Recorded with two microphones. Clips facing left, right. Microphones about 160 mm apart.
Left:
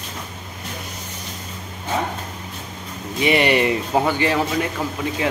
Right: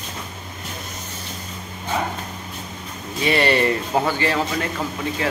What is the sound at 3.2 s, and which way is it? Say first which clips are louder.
Speech: left 1 dB; 15° left (ahead or behind).